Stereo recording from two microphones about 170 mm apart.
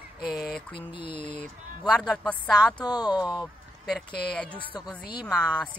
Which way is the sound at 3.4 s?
Centre (ahead or behind).